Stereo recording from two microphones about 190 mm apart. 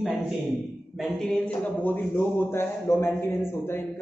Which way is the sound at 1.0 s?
5° left (ahead or behind).